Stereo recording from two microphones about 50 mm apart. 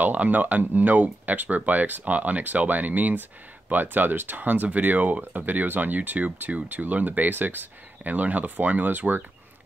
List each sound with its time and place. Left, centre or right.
0.0 s speech: right